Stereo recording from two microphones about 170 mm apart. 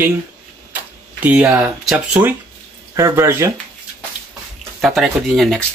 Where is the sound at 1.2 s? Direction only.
10° right (ahead or behind).